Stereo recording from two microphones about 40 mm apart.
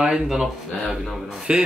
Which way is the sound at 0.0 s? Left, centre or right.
Centre.